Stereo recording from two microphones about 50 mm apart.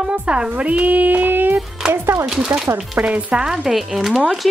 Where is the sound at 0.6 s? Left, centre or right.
Right.